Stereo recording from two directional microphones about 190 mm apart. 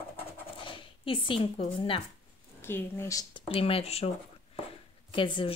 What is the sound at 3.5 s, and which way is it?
Speech, 30° left (ahead or behind).